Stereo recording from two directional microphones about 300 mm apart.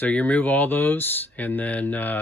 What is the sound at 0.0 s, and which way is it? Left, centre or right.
Speech, centre.